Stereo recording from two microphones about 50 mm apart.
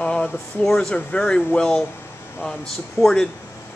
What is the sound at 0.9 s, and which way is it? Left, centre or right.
Speech, left.